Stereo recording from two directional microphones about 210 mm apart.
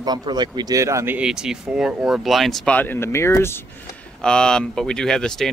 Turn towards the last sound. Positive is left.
turn(degrees=0)  # may be behind; listen again after turning